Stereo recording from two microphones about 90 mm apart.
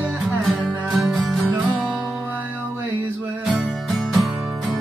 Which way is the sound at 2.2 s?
20° right (ahead or behind).